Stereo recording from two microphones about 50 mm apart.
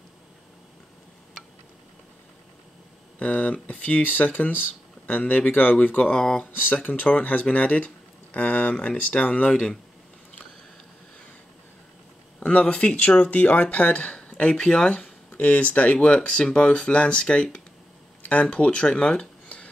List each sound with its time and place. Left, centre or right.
3.2 s speech: left
6.1 s speech: centre
6.5 s speech: left
12.4 s speech: left